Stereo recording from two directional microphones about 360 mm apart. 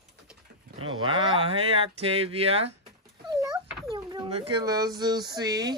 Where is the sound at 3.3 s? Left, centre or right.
Centre.